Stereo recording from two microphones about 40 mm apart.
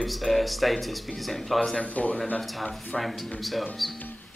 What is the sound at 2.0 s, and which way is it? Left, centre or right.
Speech, left.